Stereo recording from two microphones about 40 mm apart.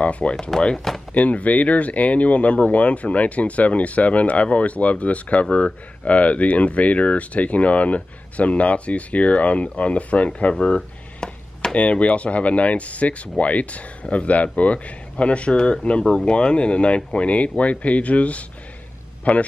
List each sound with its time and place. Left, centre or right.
0.0 s speech: left
1.1 s speech: left
10.5 s a sound: left
11.7 s speech: left